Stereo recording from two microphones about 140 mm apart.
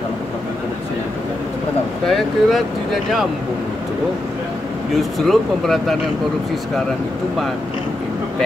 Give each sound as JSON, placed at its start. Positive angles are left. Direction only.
{"t": 2.0, "sound": "speech", "side_deg": 0}
{"t": 4.9, "sound": "speech", "side_deg": 0}